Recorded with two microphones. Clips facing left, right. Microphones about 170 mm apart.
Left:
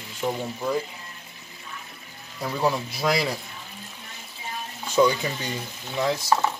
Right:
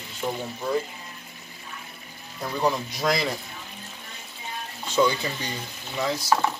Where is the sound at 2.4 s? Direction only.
5° left (ahead or behind).